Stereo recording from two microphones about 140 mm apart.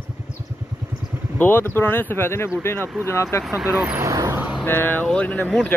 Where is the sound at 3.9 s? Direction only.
25° right (ahead or behind).